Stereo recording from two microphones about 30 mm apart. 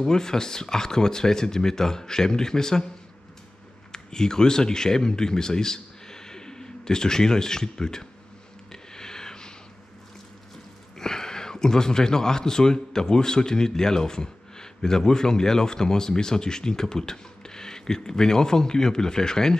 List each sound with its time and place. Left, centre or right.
0.0 s speech: left
3.9 s speech: left
8.9 s a sound: left
11.0 s speech: centre